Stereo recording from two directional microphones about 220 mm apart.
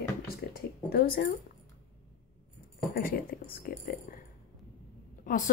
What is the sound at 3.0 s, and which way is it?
Speech, 40° left (ahead or behind).